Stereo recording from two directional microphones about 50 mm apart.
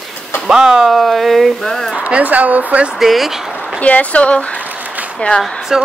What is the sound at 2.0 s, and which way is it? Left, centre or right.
Speech, right.